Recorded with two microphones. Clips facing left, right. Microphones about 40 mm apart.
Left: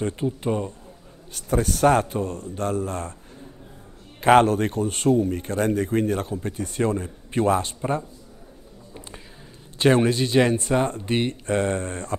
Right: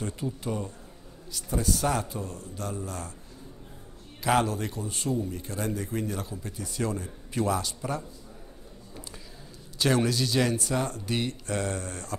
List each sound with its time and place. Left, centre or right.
0.0 s speech: left
1.3 s speech: left
4.2 s speech: left
9.8 s speech: left